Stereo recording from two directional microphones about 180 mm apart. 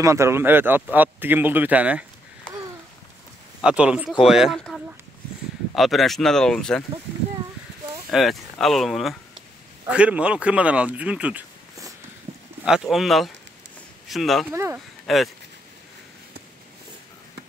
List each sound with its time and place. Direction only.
0.0 s speech: 15° right (ahead or behind)
3.6 s speech: 5° right (ahead or behind)
8.1 s speech: centre (ahead or behind)
12.3 s livestock: 30° right (ahead or behind)
12.6 s speech: centre (ahead or behind)
14.5 s speech: 15° right (ahead or behind)
15.1 s speech: centre (ahead or behind)